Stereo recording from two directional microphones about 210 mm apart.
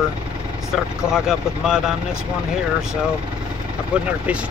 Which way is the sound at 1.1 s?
5° right (ahead or behind).